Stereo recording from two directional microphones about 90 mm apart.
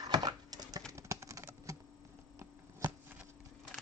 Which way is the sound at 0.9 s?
35° right (ahead or behind).